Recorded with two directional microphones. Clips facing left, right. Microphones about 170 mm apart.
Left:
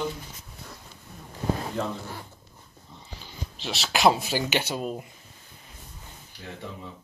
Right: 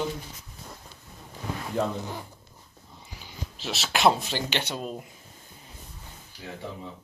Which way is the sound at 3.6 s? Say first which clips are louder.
Left 1 dB; centre (ahead or behind).